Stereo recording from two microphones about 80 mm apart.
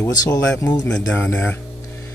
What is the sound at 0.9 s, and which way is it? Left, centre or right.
Speech, left.